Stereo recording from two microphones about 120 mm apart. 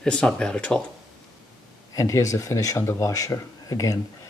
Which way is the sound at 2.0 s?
25° left (ahead or behind).